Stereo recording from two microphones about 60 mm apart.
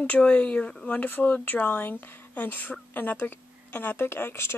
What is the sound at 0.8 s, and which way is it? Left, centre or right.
Speech, left.